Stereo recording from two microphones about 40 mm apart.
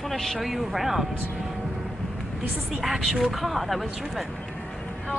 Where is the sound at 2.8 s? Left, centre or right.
Centre.